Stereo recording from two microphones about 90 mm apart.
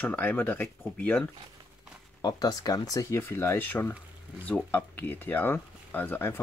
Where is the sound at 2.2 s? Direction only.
45° left (ahead or behind).